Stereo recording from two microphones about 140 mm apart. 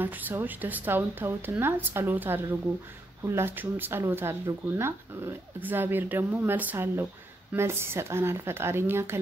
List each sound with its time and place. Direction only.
0.0 s speech: 15° right (ahead or behind)